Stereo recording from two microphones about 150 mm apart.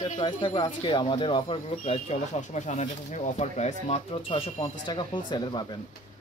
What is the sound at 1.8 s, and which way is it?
Speech, 50° left (ahead or behind).